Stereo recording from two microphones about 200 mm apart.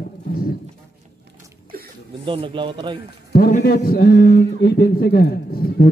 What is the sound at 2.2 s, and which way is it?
Speech, 25° right (ahead or behind).